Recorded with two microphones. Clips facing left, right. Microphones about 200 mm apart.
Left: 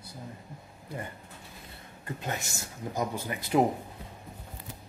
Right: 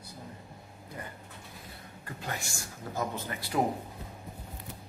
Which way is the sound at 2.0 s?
20° left (ahead or behind).